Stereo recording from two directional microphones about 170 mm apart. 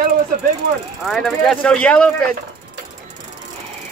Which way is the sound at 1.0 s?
Centre (ahead or behind).